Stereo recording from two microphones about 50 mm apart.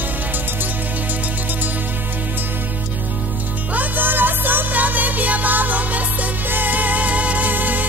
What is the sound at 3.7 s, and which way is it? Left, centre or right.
Music, right.